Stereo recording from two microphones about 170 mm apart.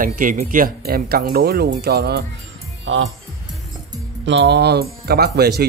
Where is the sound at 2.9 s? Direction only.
90° right.